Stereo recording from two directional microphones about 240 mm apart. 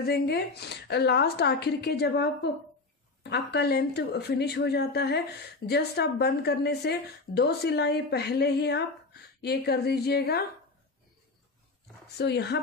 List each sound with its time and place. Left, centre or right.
0.0 s speech: left
3.3 s a woman's voice: left
12.2 s speech: left